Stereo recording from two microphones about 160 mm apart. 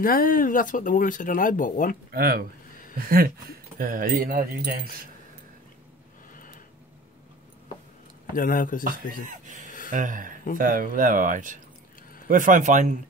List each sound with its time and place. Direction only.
0.0 s speech: 65° left (ahead or behind)
2.0 s speech: 70° right (ahead or behind)
8.3 s speech: 60° left (ahead or behind)
9.3 s speech: 55° right (ahead or behind)